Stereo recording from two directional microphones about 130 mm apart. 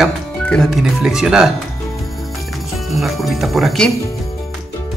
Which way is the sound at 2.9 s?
Centre (ahead or behind).